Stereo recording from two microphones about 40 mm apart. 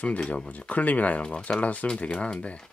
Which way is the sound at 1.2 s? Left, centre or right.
Left.